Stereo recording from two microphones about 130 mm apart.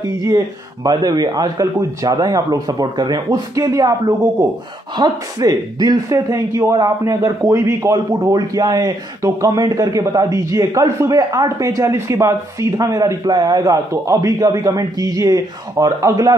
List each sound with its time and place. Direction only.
0.0 s a man's voice: 30° right (ahead or behind)
4.9 s a man's voice: 30° right (ahead or behind)